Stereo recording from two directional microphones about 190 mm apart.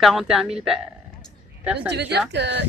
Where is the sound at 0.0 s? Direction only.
Centre (ahead or behind).